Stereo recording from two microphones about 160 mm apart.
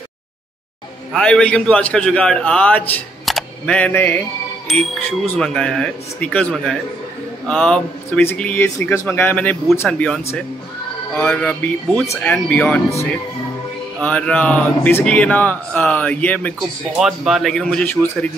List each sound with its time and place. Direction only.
1.1 s speech: 5° left (ahead or behind)
3.3 s single-lens reflex camera: centre (ahead or behind)
5.3 s speech: 5° left (ahead or behind)
13.9 s speech: 5° left (ahead or behind)
17.0 s speech: centre (ahead or behind)